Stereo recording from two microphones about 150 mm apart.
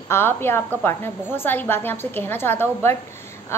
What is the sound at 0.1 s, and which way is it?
A woman's voice, 15° left (ahead or behind).